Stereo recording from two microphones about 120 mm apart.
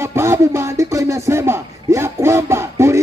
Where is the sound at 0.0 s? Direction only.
20° right (ahead or behind).